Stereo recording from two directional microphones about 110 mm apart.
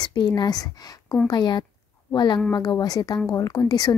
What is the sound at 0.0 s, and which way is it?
A woman's voice, 40° left (ahead or behind).